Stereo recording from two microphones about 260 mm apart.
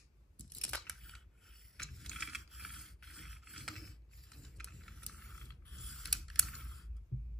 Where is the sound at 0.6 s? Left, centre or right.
Centre.